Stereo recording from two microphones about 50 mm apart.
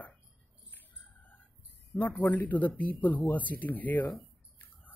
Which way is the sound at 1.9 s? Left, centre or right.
Left.